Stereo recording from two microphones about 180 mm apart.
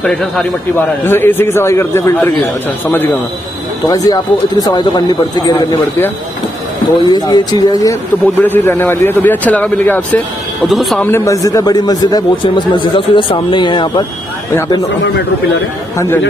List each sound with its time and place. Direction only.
0.0 s a man's voice: 5° left (ahead or behind)
3.8 s a man's voice: 20° left (ahead or behind); by 11.1 s centre (ahead or behind)
11.1 s a man's voice: 15° left (ahead or behind)